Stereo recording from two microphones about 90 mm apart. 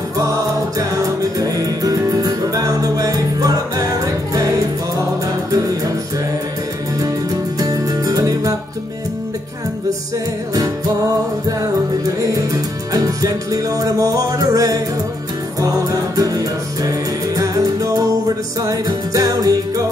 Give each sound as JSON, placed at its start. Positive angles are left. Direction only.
{"t": 0.2, "sound": "music", "side_deg": -40}
{"t": 7.0, "sound": "music", "side_deg": -45}
{"t": 10.5, "sound": "music", "side_deg": -45}
{"t": 12.2, "sound": "music", "side_deg": -40}